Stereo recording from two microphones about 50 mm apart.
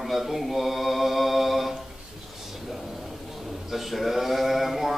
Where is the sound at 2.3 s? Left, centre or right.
Centre.